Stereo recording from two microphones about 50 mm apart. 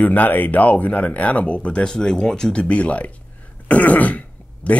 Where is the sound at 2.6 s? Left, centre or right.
Left.